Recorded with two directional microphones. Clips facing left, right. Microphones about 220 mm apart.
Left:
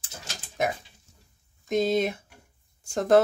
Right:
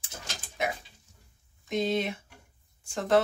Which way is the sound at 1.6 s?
40° left (ahead or behind).